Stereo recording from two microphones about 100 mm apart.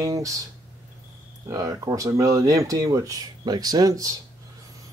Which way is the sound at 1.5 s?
35° right (ahead or behind).